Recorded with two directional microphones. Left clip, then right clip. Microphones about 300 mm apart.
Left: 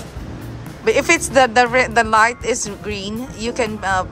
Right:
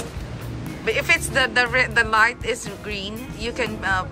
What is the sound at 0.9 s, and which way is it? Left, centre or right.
Speech, centre.